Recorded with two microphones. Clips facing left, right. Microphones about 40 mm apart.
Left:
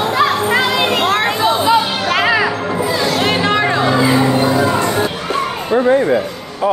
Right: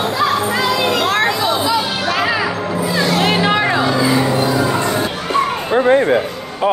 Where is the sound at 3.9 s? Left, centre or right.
Left.